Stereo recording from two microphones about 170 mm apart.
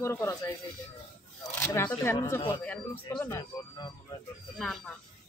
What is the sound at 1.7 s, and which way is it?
Speech, 15° left (ahead or behind).